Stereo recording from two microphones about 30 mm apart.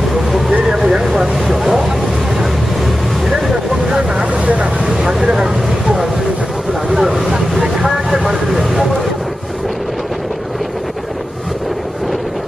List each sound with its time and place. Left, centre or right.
0.7 s vehicle: right
4.1 s vehicle: right
4.8 s vehicle: right
7.0 s vehicle: centre